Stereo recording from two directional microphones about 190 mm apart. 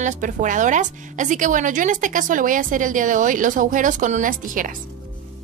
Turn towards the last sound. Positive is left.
turn(degrees=-45)  # may be behind; listen again after turning